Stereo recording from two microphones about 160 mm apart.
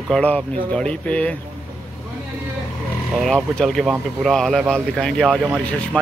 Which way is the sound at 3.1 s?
5° left (ahead or behind).